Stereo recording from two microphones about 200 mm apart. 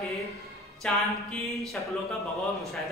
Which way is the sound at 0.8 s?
Centre (ahead or behind).